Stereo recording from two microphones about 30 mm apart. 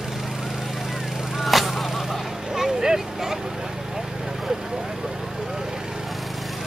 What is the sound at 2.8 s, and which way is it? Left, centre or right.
Vehicle, right.